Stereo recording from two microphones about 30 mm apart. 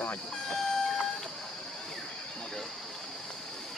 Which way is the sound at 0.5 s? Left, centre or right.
Centre.